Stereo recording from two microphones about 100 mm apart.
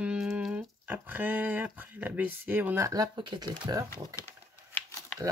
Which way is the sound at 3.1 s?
50° right (ahead or behind).